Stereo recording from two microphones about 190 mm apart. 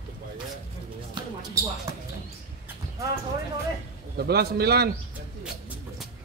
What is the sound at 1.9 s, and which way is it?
Basketball bounce, 15° right (ahead or behind).